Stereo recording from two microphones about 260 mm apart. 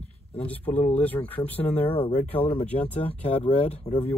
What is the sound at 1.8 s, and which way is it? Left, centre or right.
Speech, left.